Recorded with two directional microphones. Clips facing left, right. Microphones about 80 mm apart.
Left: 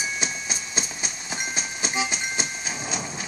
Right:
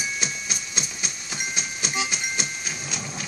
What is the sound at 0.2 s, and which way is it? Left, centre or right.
Music, left.